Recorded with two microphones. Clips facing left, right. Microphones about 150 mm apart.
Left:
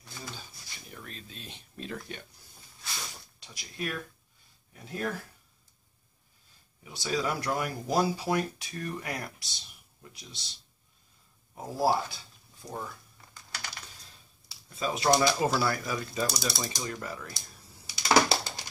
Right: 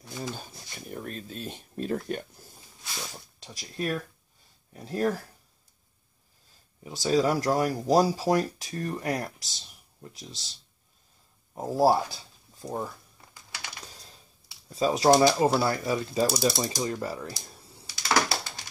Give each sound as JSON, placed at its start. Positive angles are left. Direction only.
{"t": 0.4, "sound": "a sound", "side_deg": -45}
{"t": 4.7, "sound": "speech", "side_deg": -35}
{"t": 7.0, "sound": "speech", "side_deg": -40}
{"t": 11.5, "sound": "speech", "side_deg": -35}
{"t": 14.7, "sound": "speech", "side_deg": -35}
{"t": 16.3, "sound": "speech", "side_deg": -40}
{"t": 17.8, "sound": "computer keyboard", "side_deg": 15}